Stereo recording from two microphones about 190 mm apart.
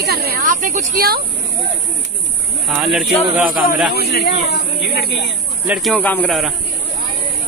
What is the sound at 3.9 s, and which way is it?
Speech, 55° left (ahead or behind).